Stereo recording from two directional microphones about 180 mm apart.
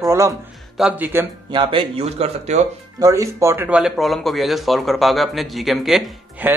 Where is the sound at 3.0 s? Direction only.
15° right (ahead or behind).